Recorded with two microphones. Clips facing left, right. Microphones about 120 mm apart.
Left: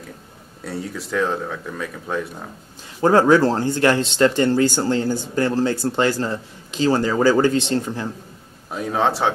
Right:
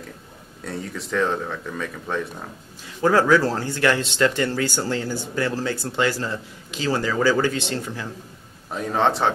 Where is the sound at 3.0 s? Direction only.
30° left (ahead or behind).